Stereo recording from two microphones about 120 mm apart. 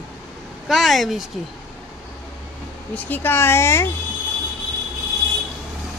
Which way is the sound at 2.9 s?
15° left (ahead or behind).